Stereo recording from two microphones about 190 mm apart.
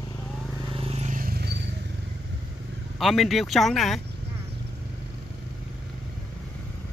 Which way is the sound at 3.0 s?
Centre (ahead or behind).